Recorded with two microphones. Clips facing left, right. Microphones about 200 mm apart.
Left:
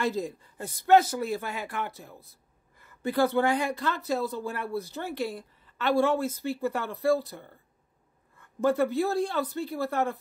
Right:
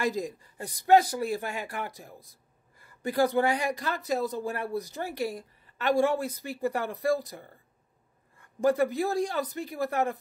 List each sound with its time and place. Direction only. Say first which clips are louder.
0.1 s speech: left 1 dB; 15° right (ahead or behind)
1.3 s speech: even; 40° right (ahead or behind)
3.2 s speech: even; 15° right (ahead or behind)
4.4 s speech: right 1 dB; 40° right (ahead or behind)
4.7 s speech: even; 15° right (ahead or behind)
8.7 s speech: left 1 dB; 15° right (ahead or behind)